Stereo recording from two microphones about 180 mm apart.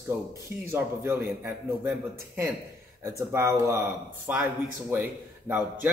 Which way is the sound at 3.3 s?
15° right (ahead or behind).